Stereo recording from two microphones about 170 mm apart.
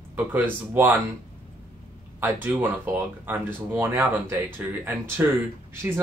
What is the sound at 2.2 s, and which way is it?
Speech, 10° right (ahead or behind).